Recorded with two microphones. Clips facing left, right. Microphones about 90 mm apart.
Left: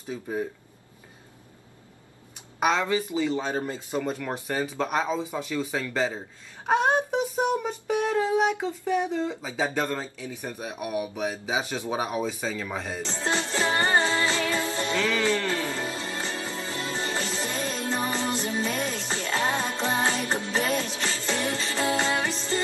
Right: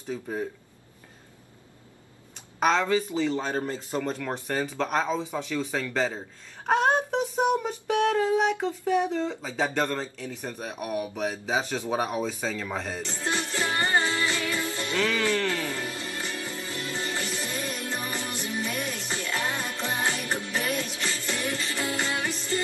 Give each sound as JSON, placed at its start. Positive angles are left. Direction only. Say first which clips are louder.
{"t": 0.1, "sound": "speech", "louder": "left 1 dB", "side_deg": 5}
{"t": 2.6, "sound": "speech", "louder": "right 1 dB", "side_deg": 5}
{"t": 13.0, "sound": "music", "louder": "left 2 dB", "side_deg": 25}